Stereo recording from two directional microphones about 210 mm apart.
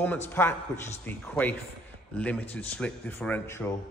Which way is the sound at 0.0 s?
10° left (ahead or behind).